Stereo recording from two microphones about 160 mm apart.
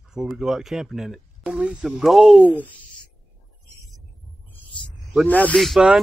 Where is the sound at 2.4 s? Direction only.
10° left (ahead or behind).